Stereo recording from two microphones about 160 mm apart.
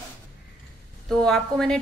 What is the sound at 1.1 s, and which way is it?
Speech, 5° left (ahead or behind).